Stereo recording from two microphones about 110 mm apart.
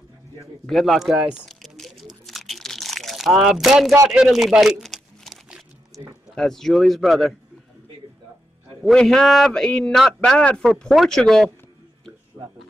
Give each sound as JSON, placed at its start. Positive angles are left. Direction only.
{"t": 0.7, "sound": "a man's voice", "side_deg": 0}
{"t": 1.5, "sound": "typing", "side_deg": 0}
{"t": 2.2, "sound": "crunch", "side_deg": 0}
{"t": 4.1, "sound": "a sound", "side_deg": -5}
{"t": 5.9, "sound": "a man's voice", "side_deg": 0}
{"t": 8.8, "sound": "a man's voice", "side_deg": 5}
{"t": 12.4, "sound": "speech", "side_deg": -25}